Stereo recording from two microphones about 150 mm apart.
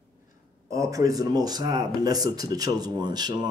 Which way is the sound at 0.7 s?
20° right (ahead or behind).